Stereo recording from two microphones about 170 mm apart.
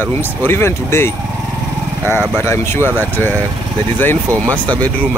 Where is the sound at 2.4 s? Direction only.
15° left (ahead or behind).